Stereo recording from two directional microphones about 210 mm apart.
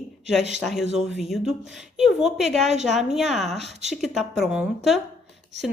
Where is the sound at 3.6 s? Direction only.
30° right (ahead or behind).